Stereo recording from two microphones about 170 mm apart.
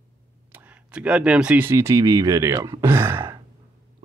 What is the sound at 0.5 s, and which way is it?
Speech, 10° right (ahead or behind).